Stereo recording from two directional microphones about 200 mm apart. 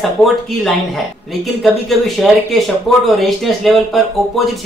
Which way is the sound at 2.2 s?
Centre (ahead or behind).